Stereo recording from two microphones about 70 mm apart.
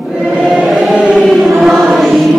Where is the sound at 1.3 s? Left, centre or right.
Centre.